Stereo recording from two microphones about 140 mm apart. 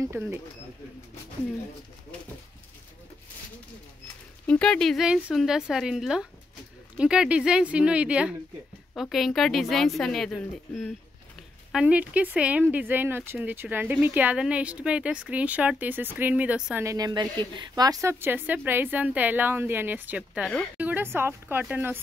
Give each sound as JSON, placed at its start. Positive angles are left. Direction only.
{"t": 0.0, "sound": "speech", "side_deg": -20}
{"t": 4.5, "sound": "a woman's voice", "side_deg": 5}
{"t": 11.7, "sound": "speech", "side_deg": -10}
{"t": 16.8, "sound": "speech", "side_deg": -25}